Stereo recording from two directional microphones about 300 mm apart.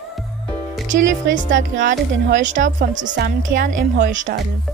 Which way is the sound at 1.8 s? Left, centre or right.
Right.